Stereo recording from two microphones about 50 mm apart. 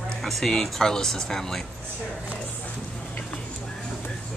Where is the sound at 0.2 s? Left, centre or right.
Centre.